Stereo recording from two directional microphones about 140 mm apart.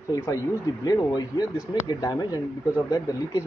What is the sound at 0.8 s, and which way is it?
Speech, 30° left (ahead or behind).